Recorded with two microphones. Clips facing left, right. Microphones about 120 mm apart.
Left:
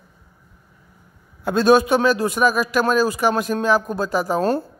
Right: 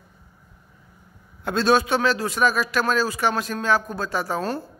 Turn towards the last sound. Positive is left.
turn(degrees=45)  # may be behind; listen again after turning